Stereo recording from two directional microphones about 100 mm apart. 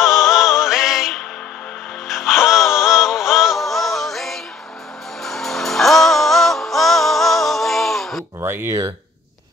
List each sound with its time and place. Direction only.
0.0 s music: 5° right (ahead or behind)
8.4 s speech: 25° right (ahead or behind)